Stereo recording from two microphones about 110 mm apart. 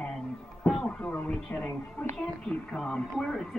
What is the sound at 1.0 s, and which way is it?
Speech, 15° left (ahead or behind).